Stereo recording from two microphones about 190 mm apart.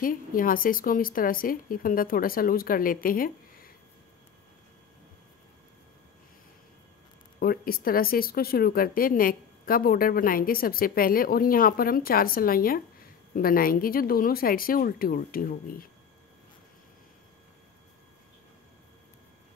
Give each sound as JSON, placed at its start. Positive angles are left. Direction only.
{"t": 0.0, "sound": "speech", "side_deg": 45}
{"t": 7.3, "sound": "speech", "side_deg": 50}